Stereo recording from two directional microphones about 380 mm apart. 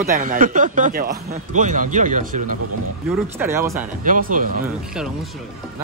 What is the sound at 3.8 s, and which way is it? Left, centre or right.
Speech, right.